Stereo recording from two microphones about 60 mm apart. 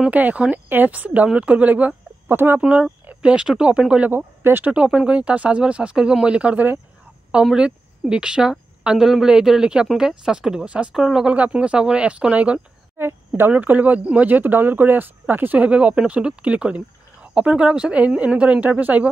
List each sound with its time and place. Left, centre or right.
0.1 s speech: right
2.2 s speech: right
2.6 s speech: centre
4.1 s speech: right
4.6 s speech: centre
7.5 s a woman's voice: centre
11.3 s speech: right
12.9 s a sound: right
13.5 s speech: right